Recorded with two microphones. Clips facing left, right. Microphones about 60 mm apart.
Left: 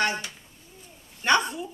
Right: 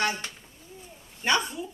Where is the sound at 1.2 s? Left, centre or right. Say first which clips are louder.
Left 3 dB; left.